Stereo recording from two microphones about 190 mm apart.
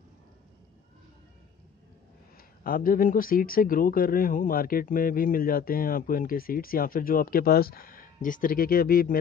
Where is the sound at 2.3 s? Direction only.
50° left (ahead or behind).